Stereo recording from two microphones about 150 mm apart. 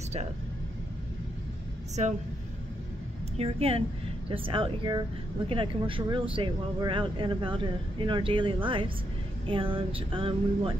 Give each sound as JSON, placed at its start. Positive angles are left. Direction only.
{"t": 3.3, "sound": "speech", "side_deg": -40}